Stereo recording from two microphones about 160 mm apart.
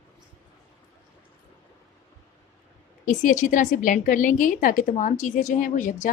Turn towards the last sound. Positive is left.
turn(degrees=55)  # may be behind; listen again after turning